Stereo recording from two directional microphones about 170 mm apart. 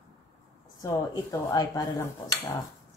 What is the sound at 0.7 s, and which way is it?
Speech, 20° left (ahead or behind).